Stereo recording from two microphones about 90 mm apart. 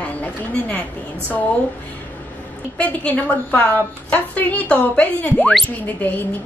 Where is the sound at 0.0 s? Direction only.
15° left (ahead or behind).